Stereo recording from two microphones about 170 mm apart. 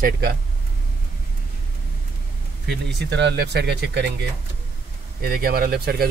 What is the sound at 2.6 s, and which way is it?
Speech, 90° right.